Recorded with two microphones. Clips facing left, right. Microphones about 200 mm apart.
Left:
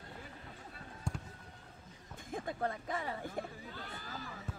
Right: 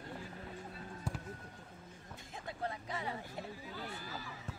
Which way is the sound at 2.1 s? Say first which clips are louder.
Left 7 dB; 50° left (ahead or behind).